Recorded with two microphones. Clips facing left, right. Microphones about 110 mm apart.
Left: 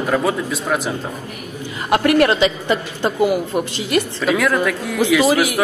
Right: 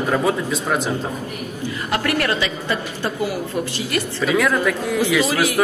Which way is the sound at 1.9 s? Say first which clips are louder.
Left 7 dB; 20° left (ahead or behind).